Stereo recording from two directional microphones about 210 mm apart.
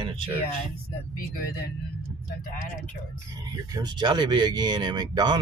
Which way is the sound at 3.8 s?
20° right (ahead or behind).